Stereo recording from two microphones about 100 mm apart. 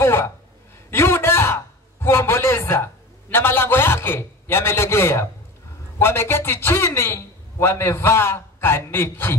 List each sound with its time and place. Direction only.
0.0 s a man's voice: 25° left (ahead or behind)